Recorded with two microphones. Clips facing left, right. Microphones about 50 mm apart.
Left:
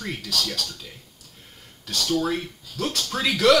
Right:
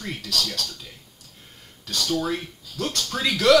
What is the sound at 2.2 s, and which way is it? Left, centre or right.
A man's voice, centre.